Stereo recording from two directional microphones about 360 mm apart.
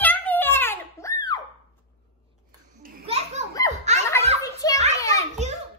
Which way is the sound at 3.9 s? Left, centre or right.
Centre.